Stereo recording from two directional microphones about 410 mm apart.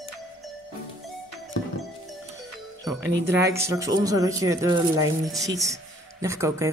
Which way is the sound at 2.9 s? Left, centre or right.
Right.